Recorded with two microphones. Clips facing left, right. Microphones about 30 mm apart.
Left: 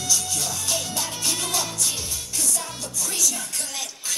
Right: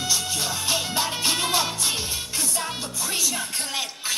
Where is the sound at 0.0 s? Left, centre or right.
Right.